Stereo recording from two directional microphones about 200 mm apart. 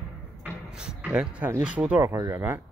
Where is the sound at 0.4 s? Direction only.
5° right (ahead or behind).